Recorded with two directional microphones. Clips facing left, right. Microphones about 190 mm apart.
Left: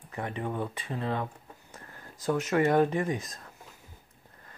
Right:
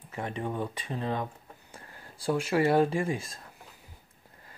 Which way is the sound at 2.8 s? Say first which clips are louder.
Even; 30° right (ahead or behind).